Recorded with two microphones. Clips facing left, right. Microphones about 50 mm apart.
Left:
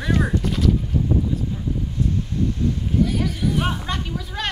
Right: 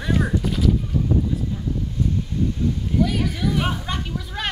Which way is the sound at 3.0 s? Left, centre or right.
Right.